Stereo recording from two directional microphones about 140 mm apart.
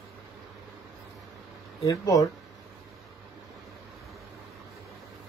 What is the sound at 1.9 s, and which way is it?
Speech, 25° left (ahead or behind).